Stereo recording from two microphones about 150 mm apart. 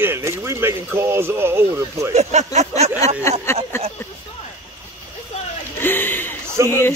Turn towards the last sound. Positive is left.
turn(degrees=15)  # may be behind; listen again after turning